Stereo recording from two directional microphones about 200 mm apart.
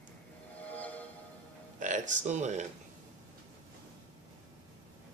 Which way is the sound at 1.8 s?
40° right (ahead or behind).